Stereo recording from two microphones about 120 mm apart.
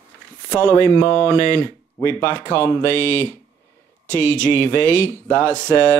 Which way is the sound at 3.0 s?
25° right (ahead or behind).